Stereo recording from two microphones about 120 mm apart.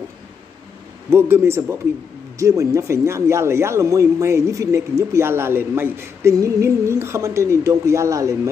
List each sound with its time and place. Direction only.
1.1 s speech: 20° right (ahead or behind)